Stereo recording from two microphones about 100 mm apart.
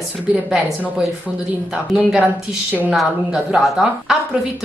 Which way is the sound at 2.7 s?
15° right (ahead or behind).